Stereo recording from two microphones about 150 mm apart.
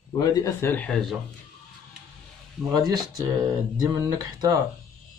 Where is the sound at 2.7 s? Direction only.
25° right (ahead or behind).